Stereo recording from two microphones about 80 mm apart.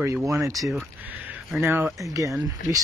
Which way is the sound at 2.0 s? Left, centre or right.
Right.